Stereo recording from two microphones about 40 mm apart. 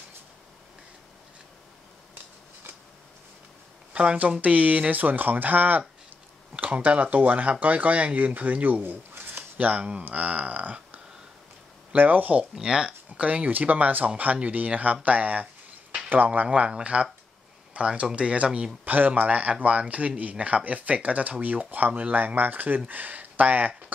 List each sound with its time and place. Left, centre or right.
3.9 s speech: right
9.1 s a sound: right
9.8 s speech: right
10.0 s speech: right
12.5 s speech: centre
13.2 s speech: right
13.5 s speech: right
16.4 s speech: right
18.9 s speech: right
19.2 s speech: right